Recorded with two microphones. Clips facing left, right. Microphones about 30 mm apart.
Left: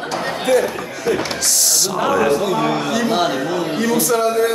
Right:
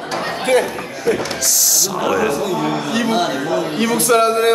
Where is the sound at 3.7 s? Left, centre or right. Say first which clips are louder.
Right 3 dB; right.